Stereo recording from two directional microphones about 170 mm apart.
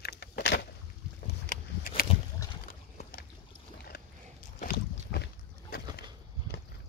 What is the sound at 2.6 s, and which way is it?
Horse, 55° left (ahead or behind).